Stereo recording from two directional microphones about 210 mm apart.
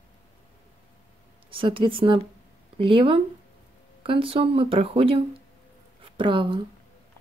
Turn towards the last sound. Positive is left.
turn(degrees=-25)  # may be behind; listen again after turning